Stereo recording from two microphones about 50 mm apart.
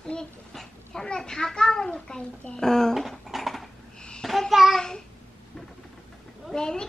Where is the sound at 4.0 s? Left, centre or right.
Centre.